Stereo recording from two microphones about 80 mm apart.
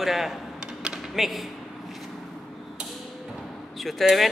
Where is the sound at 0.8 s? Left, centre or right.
Centre.